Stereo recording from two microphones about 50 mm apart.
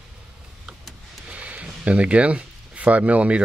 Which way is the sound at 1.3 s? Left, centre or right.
Right.